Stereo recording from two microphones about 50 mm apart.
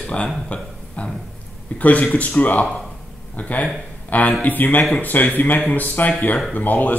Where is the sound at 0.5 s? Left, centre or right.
Left.